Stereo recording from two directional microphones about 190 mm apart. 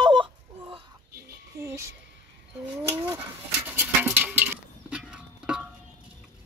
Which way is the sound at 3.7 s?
10° right (ahead or behind).